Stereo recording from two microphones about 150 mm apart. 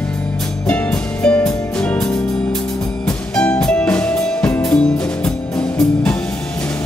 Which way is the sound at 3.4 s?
5° left (ahead or behind).